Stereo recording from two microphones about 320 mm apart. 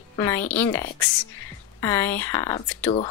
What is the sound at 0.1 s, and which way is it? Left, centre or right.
Speech, centre.